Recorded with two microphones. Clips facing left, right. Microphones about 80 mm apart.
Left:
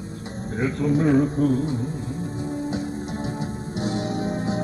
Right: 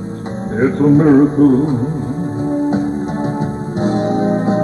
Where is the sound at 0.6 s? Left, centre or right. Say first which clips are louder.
Right 11 dB; right.